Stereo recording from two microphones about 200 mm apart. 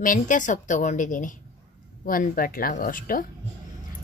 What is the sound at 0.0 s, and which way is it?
A woman's voice, 40° left (ahead or behind).